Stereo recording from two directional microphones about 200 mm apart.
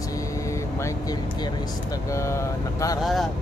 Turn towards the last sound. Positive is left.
turn(degrees=0)  # may be behind; listen again after turning